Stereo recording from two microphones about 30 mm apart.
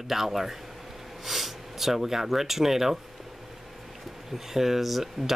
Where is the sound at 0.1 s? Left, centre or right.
Centre.